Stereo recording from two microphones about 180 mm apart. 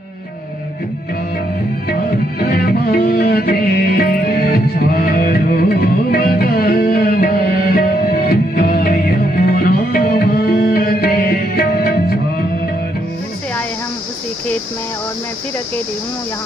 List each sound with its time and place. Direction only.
2.4 s music: 55° left (ahead or behind)